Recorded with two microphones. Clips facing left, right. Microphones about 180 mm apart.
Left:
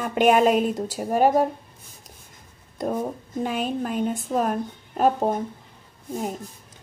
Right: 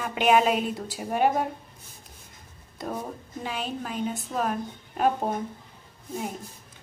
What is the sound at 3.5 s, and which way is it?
A woman's voice, 50° left (ahead or behind).